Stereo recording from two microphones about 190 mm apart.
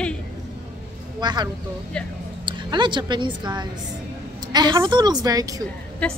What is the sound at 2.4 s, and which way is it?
A woman's voice, 25° right (ahead or behind).